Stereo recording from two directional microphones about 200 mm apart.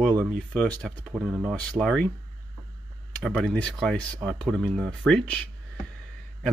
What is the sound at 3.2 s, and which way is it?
Speech, centre (ahead or behind).